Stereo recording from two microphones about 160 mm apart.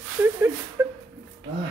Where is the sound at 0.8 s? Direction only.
15° right (ahead or behind).